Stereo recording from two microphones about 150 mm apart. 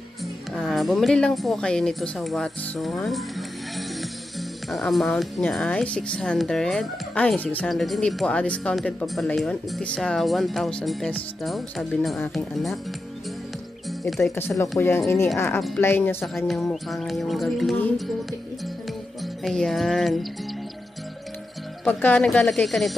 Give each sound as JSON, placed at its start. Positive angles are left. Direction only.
{"t": 0.6, "sound": "speech", "side_deg": 0}
{"t": 14.0, "sound": "speech", "side_deg": 0}
{"t": 14.8, "sound": "speech", "side_deg": 15}
{"t": 16.3, "sound": "speech", "side_deg": 0}
{"t": 19.4, "sound": "speech", "side_deg": 0}
{"t": 21.8, "sound": "speech", "side_deg": 10}